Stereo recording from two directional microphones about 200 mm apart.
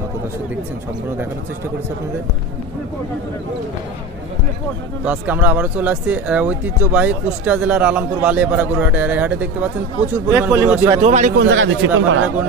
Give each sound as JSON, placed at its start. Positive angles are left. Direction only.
{"t": 5.0, "sound": "speech", "side_deg": -10}
{"t": 11.0, "sound": "a man's voice", "side_deg": -35}
{"t": 11.3, "sound": "speech", "side_deg": -65}